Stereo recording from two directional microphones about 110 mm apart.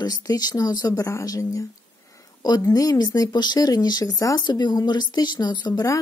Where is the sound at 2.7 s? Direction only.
35° left (ahead or behind).